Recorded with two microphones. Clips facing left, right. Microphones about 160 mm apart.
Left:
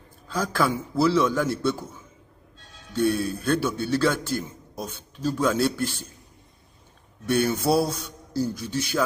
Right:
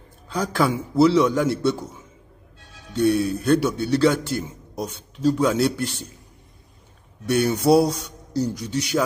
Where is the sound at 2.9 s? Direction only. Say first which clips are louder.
Right 4 dB; 15° right (ahead or behind).